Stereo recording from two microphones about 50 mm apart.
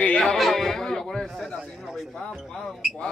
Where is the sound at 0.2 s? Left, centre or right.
Centre.